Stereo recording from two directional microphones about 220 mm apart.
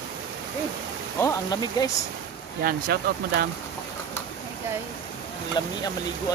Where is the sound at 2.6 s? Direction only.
45° right (ahead or behind).